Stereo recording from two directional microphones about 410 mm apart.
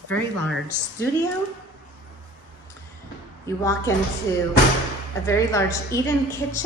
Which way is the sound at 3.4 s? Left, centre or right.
Centre.